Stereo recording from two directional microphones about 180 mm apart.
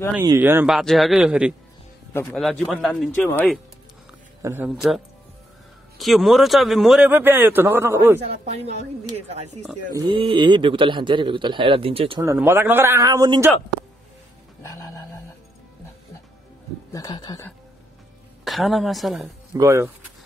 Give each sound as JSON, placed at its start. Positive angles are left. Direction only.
{"t": 0.2, "sound": "speech", "side_deg": -15}
{"t": 0.7, "sound": "a woman's voice", "side_deg": 0}
{"t": 4.4, "sound": "a man's voice", "side_deg": -15}
{"t": 4.6, "sound": "a woman's voice", "side_deg": 0}
{"t": 9.3, "sound": "speech", "side_deg": -35}
{"t": 9.9, "sound": "speech", "side_deg": -25}
{"t": 12.2, "sound": "speech", "side_deg": -15}
{"t": 16.9, "sound": "speech", "side_deg": 20}
{"t": 18.4, "sound": "a woman's voice", "side_deg": 0}
{"t": 19.5, "sound": "speech", "side_deg": -15}